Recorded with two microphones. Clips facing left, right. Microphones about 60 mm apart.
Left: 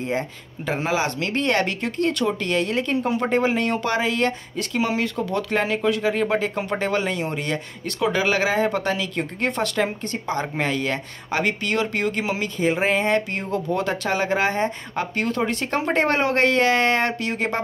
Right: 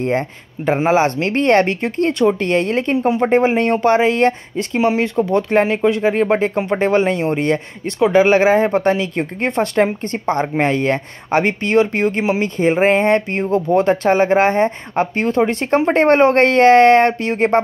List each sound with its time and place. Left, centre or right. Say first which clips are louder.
0.0 s speech: right 7 dB; right